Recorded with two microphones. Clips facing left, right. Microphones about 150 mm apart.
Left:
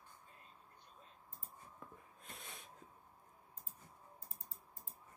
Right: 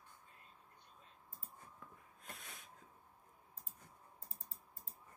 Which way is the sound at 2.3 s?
25° left (ahead or behind).